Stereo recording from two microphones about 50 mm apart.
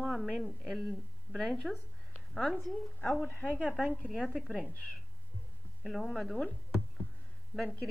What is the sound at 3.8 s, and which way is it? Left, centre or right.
A woman's voice, left.